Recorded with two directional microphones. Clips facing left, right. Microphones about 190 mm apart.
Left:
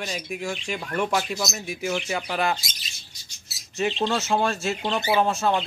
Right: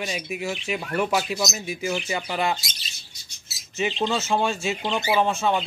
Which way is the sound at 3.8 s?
Centre (ahead or behind).